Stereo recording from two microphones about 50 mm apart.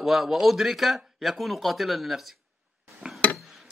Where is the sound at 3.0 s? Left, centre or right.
Right.